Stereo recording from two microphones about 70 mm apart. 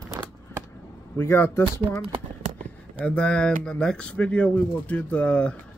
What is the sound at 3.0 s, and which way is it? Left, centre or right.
Speech, centre.